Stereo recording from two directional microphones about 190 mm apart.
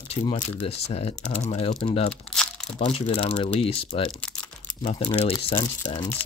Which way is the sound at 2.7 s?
35° left (ahead or behind).